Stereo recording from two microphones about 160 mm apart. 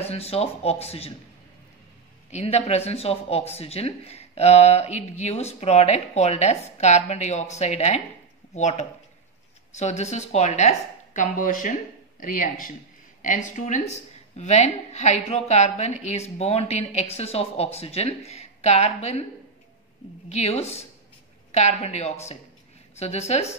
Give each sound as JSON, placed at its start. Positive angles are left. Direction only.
{"t": 0.0, "sound": "speech", "side_deg": 40}
{"t": 2.3, "sound": "speech", "side_deg": 40}
{"t": 20.2, "sound": "speech", "side_deg": 40}